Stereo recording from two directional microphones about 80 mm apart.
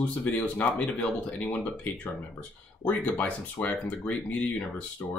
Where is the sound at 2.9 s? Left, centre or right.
Centre.